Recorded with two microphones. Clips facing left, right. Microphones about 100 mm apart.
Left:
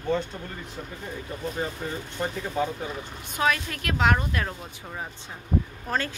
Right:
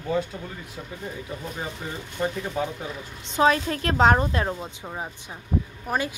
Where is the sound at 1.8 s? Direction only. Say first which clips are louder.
Right 2 dB; 5° right (ahead or behind).